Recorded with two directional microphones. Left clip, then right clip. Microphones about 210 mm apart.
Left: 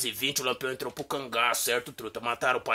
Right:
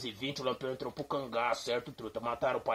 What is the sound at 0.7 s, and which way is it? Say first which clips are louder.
Speech: left 3 dB; 25° left (ahead or behind).